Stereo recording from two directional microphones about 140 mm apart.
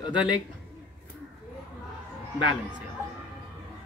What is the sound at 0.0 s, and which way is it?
Speech, 30° left (ahead or behind).